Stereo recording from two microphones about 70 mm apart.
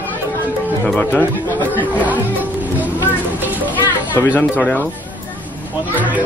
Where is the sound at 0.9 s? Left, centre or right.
Left.